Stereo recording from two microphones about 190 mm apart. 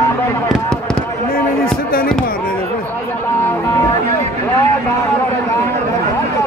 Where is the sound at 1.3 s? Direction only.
50° left (ahead or behind).